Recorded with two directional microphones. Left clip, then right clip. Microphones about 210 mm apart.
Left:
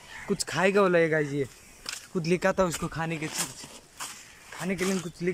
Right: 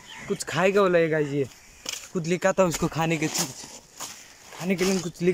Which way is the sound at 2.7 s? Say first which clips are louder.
Right 6 dB; 15° right (ahead or behind).